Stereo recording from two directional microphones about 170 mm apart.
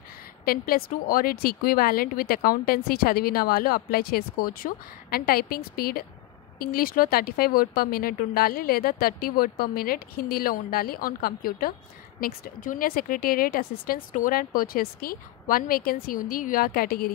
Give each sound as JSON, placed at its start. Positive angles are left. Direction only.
{"t": 0.5, "sound": "speech", "side_deg": 60}